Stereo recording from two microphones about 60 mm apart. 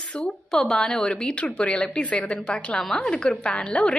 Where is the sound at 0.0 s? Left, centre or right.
Centre.